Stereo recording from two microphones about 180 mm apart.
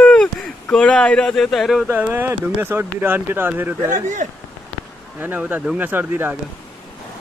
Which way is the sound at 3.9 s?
45° right (ahead or behind).